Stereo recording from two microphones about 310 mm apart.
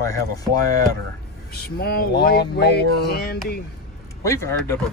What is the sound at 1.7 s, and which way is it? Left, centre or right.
Speech, left.